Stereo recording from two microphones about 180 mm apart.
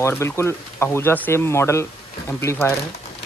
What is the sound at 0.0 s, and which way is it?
Speech, 15° left (ahead or behind).